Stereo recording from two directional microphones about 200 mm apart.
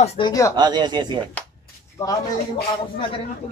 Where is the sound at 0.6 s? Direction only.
20° right (ahead or behind).